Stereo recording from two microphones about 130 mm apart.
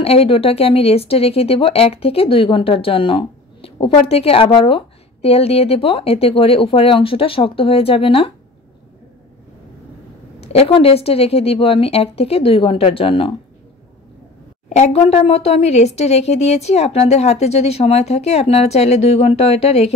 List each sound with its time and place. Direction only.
0.0 s speech: 50° left (ahead or behind)
10.4 s speech: 50° left (ahead or behind)
14.7 s speech: 55° left (ahead or behind)